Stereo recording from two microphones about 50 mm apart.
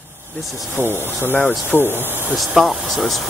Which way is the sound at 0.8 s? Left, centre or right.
Left.